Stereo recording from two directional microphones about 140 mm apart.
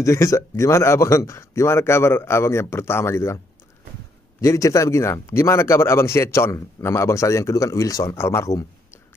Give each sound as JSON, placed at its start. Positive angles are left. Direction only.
{"t": 0.0, "sound": "speech", "side_deg": 20}
{"t": 4.4, "sound": "speech", "side_deg": 20}